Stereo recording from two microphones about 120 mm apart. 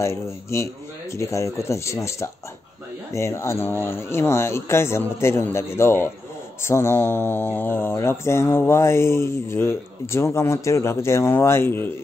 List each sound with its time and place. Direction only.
0.0 s speech: 25° left (ahead or behind)
3.1 s speech: 25° left (ahead or behind)